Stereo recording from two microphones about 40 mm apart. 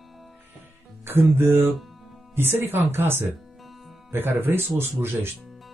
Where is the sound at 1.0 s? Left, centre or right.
Right.